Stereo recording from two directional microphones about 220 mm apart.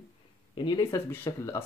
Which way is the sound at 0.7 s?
15° left (ahead or behind).